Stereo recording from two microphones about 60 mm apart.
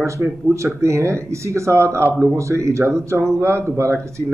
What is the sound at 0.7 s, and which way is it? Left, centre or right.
A man's voice, right.